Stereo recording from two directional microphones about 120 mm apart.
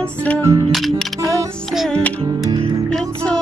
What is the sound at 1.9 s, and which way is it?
Music, 10° left (ahead or behind).